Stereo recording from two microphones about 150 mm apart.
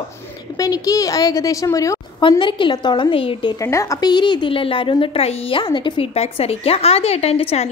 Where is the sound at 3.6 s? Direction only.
20° left (ahead or behind).